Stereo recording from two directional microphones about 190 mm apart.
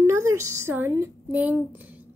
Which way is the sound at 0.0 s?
15° right (ahead or behind).